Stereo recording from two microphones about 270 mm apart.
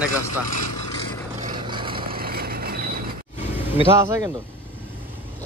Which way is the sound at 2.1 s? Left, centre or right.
Right.